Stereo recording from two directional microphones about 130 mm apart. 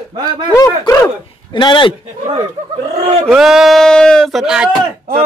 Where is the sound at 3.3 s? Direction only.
5° right (ahead or behind).